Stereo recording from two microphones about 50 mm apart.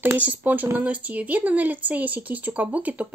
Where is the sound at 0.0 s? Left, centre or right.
Right.